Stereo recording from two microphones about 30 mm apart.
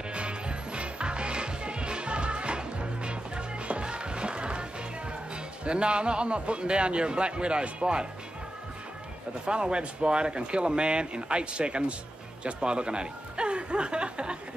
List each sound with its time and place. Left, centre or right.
0.1 s music: right
5.3 s speech: right
9.5 s speech: right
12.5 s a sound: right